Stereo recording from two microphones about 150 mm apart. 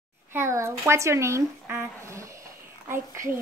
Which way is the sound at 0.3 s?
20° right (ahead or behind).